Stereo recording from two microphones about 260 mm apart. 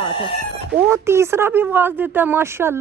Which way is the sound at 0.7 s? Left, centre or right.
Centre.